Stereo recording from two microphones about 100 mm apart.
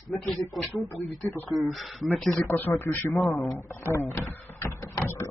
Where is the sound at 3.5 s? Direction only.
25° left (ahead or behind).